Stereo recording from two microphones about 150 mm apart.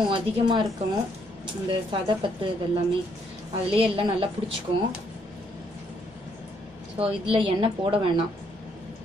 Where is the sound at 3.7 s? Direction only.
35° right (ahead or behind).